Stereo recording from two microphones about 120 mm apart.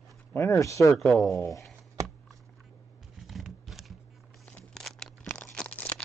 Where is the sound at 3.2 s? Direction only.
Centre (ahead or behind).